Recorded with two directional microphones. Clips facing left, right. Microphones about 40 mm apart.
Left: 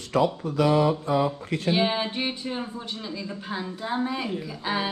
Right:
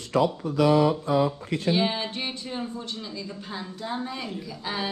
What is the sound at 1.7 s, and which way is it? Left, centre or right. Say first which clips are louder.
Speech: left 2 dB; centre.